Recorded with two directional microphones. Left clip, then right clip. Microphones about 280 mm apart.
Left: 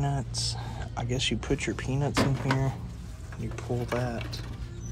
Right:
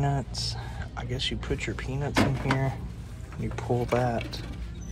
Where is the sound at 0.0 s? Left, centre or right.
Centre.